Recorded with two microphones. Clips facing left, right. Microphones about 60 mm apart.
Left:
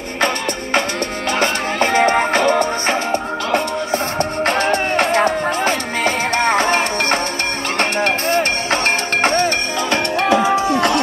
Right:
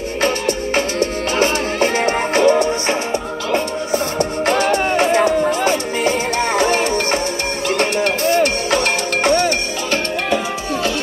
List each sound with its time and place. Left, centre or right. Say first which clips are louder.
0.5 s music: right 1 dB; left